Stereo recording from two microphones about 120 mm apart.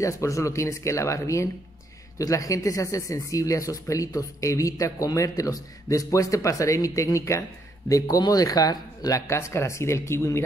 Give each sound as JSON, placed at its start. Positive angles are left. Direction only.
{"t": 0.0, "sound": "speech", "side_deg": 25}